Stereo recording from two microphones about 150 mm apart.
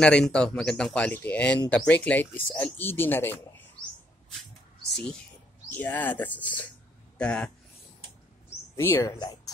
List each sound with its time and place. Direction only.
0.0 s speech: 5° left (ahead or behind)
5.7 s speech: 10° left (ahead or behind)
8.7 s speech: 15° left (ahead or behind)